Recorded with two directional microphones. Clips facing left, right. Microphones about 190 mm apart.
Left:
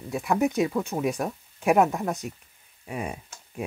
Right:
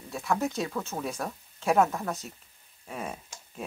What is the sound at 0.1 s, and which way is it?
Speech, 15° left (ahead or behind).